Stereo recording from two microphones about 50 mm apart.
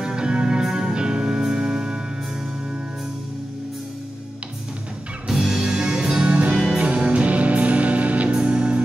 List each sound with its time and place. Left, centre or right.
0.0 s music: centre
5.3 s music: centre